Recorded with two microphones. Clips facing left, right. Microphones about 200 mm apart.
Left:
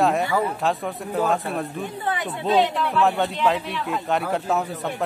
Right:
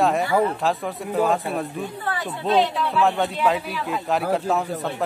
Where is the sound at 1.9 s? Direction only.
20° left (ahead or behind).